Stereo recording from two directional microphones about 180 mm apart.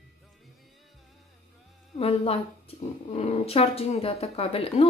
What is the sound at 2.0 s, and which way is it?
A woman's voice, 35° left (ahead or behind).